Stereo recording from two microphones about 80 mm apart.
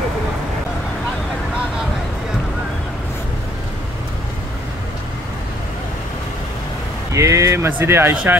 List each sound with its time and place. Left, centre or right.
7.1 s speech: right